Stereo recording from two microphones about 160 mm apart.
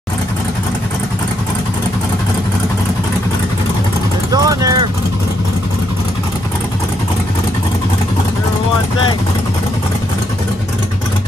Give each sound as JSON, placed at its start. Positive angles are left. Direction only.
{"t": 4.3, "sound": "vehicle", "side_deg": -20}